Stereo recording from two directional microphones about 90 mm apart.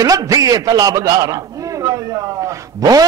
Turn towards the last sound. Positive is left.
turn(degrees=-40)  # may be behind; listen again after turning